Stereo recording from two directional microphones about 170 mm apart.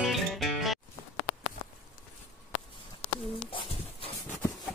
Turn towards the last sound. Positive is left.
turn(degrees=35)  # may be behind; listen again after turning